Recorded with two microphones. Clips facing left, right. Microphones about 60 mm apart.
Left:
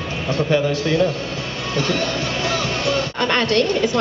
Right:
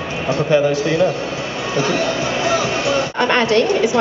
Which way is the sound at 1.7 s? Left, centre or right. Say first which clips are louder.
Right 3 dB; centre.